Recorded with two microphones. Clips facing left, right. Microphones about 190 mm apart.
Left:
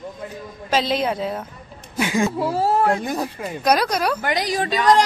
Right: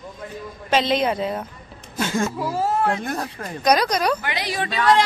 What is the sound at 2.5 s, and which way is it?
Speech, 35° left (ahead or behind).